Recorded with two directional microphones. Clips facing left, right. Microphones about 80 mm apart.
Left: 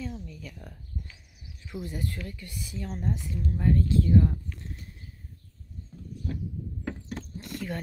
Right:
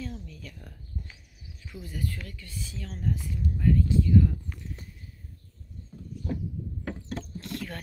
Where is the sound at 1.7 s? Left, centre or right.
Left.